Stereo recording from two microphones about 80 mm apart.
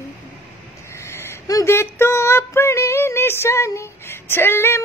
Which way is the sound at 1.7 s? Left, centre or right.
Left.